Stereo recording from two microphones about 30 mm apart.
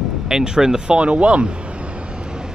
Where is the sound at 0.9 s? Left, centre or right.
Right.